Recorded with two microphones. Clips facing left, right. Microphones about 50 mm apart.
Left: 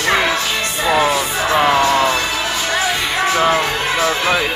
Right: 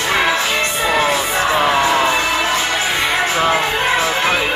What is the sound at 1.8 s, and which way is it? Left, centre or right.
Music, centre.